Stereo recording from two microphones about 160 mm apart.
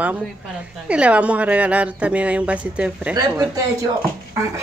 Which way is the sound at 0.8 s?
5° right (ahead or behind).